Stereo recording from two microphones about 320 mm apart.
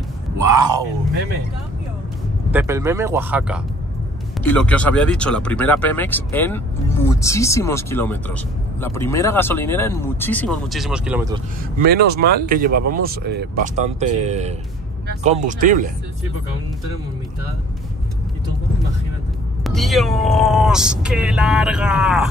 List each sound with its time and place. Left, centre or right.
0.4 s a sound: centre
2.5 s speech: centre
11.8 s speech: right
19.6 s speech: centre